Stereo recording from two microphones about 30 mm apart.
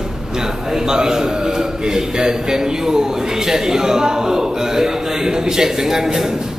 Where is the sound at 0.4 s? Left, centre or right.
Centre.